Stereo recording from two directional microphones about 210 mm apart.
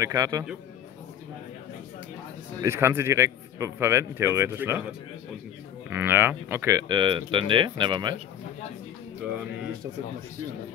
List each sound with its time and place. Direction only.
0.0 s speech: 15° right (ahead or behind)
2.6 s speech: 10° right (ahead or behind)
5.9 s speech: 10° right (ahead or behind)